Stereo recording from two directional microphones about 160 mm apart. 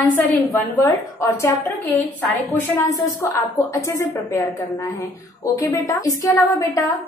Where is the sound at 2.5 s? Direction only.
15° left (ahead or behind).